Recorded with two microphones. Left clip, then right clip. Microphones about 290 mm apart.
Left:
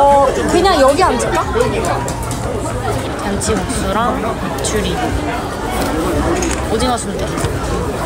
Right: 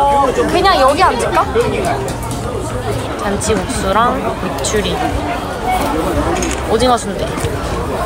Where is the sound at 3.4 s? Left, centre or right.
Centre.